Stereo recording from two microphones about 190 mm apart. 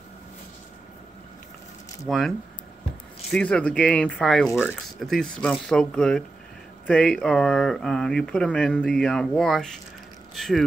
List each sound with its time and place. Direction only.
2.0 s speech: centre (ahead or behind)